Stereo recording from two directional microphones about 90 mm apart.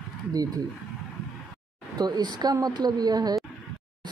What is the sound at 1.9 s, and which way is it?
Speech, 50° right (ahead or behind).